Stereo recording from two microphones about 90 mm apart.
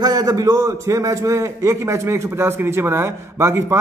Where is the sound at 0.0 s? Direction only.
45° right (ahead or behind).